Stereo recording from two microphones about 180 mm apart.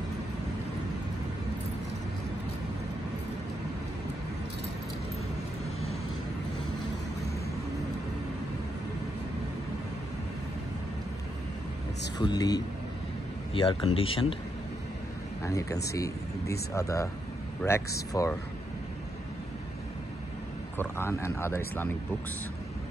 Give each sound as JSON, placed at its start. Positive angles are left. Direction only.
{"t": 12.2, "sound": "speech", "side_deg": 20}
{"t": 15.4, "sound": "speech", "side_deg": 20}
{"t": 20.7, "sound": "speech", "side_deg": 15}